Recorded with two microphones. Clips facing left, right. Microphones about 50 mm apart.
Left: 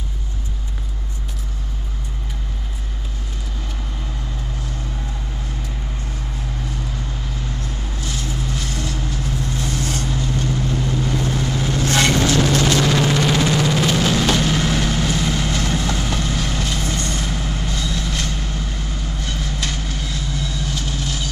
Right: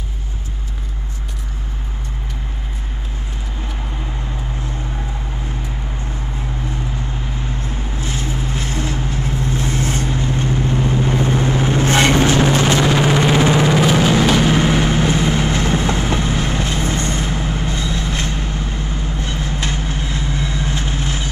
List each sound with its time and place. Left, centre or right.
7.4 s vehicle: right
13.9 s a sound: right
14.2 s vehicle: centre